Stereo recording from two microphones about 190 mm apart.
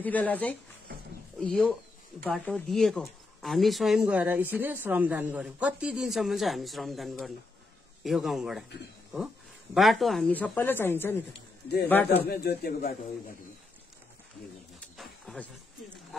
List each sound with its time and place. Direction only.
0.0 s speech: 10° left (ahead or behind)
9.8 s speech: centre (ahead or behind)
12.2 s speech: 55° left (ahead or behind)
15.0 s a sound: centre (ahead or behind)